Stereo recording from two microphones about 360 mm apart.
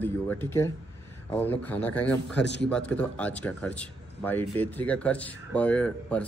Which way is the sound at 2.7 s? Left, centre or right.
Centre.